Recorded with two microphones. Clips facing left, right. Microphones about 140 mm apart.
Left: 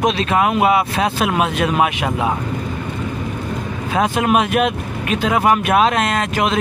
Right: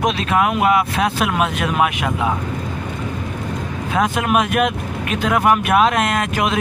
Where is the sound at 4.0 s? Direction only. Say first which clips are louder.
Left 2 dB; 30° left (ahead or behind).